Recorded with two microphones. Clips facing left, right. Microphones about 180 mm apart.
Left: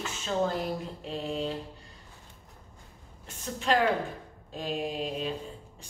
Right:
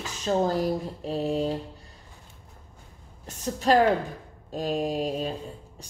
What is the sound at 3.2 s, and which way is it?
Speech, 40° right (ahead or behind).